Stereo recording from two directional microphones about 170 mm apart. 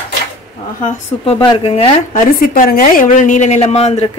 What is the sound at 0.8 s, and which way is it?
Speech, 35° left (ahead or behind).